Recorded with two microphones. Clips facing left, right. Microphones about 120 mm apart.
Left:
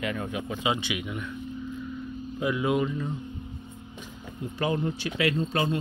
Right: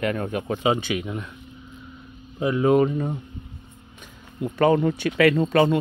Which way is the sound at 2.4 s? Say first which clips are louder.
Right 7 dB; 40° right (ahead or behind).